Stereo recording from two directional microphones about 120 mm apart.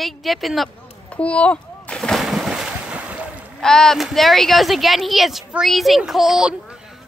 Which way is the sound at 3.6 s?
5° left (ahead or behind).